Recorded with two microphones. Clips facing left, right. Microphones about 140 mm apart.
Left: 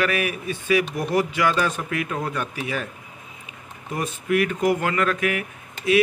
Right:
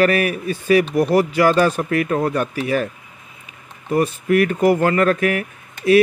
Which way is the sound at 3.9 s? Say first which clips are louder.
Right 7 dB; 50° right (ahead or behind).